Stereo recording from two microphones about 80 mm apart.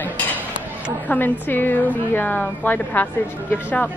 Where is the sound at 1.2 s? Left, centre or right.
Left.